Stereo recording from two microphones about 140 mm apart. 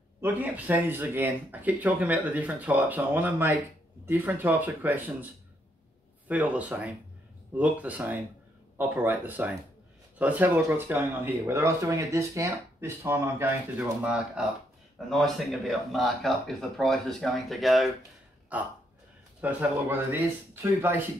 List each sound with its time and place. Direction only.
0.2 s speech: 15° right (ahead or behind)
18.5 s speech: 10° right (ahead or behind)